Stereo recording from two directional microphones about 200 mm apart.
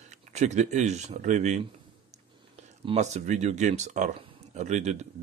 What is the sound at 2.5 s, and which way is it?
Speech, 35° right (ahead or behind).